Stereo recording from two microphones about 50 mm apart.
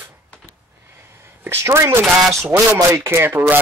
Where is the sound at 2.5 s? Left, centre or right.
Right.